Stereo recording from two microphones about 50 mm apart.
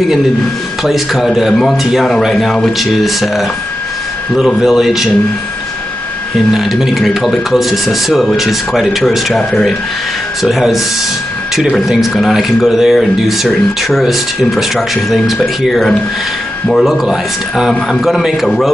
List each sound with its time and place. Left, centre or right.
0.8 s speech: centre
4.6 s speech: centre
6.5 s speech: centre
10.4 s speech: centre